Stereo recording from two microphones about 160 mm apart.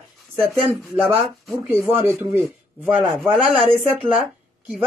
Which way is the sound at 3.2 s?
Centre (ahead or behind).